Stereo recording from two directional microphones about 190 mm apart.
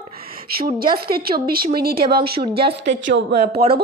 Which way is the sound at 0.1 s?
50° right (ahead or behind).